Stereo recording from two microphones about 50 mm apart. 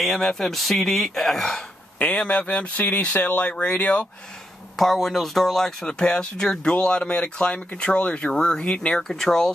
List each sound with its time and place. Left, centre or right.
0.0 s speech: centre
2.0 s speech: left
3.8 s speech: left
4.7 s speech: centre; by 8.9 s left
8.9 s speech: centre